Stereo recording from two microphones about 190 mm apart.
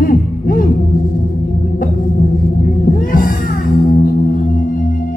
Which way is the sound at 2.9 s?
45° left (ahead or behind).